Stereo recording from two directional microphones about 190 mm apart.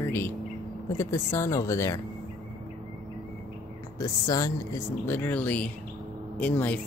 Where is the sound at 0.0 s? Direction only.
10° left (ahead or behind).